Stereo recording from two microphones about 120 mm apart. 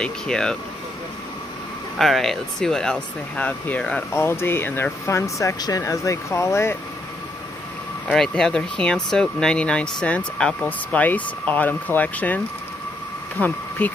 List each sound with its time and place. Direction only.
0.0 s speech: 5° left (ahead or behind)
2.0 s speech: centre (ahead or behind); by 6.8 s 20° left (ahead or behind)
8.1 s speech: 5° left (ahead or behind)
13.4 s speech: 15° left (ahead or behind)